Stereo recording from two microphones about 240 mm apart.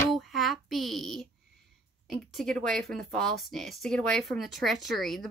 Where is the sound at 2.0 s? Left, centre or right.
Centre.